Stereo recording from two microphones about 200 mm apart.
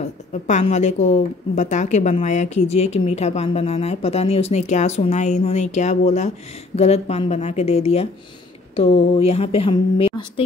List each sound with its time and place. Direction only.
0.0 s a woman's voice: 35° left (ahead or behind)